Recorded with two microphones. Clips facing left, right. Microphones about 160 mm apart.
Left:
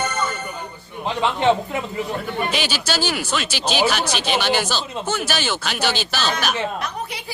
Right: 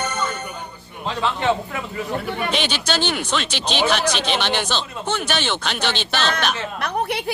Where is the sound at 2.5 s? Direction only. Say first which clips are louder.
Right 1 dB; 5° left (ahead or behind).